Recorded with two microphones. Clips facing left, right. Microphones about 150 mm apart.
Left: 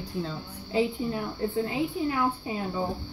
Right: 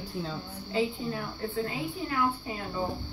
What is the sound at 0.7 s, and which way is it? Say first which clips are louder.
A woman's voice: left 3 dB; 15° left (ahead or behind).